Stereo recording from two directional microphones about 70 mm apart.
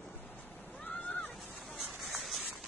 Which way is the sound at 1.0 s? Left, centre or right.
Centre.